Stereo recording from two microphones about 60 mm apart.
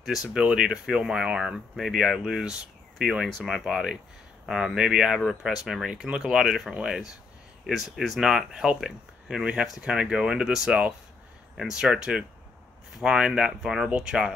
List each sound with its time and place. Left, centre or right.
0.0 s speech: centre
0.3 s speech: centre